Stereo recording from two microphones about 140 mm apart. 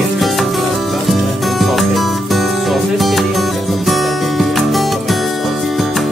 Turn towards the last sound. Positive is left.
turn(degrees=0)  # may be behind; listen again after turning